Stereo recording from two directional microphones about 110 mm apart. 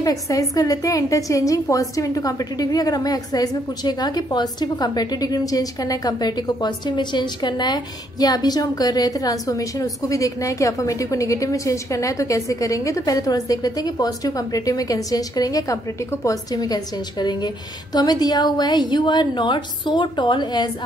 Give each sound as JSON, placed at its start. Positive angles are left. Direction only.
{"t": 0.0, "sound": "a woman's voice", "side_deg": 30}